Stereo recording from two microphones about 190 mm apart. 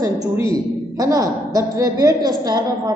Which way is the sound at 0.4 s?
15° right (ahead or behind).